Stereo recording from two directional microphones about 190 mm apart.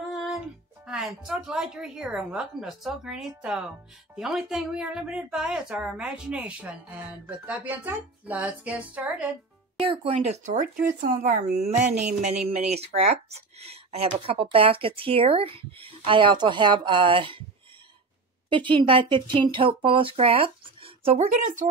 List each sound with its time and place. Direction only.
0.1 s music: centre (ahead or behind)
0.8 s a woman's voice: 5° right (ahead or behind)
9.8 s a woman's voice: 30° right (ahead or behind)
18.5 s speech: 25° right (ahead or behind); by 21.6 s 40° right (ahead or behind)